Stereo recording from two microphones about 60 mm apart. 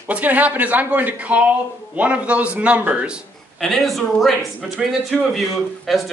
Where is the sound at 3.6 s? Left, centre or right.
Centre.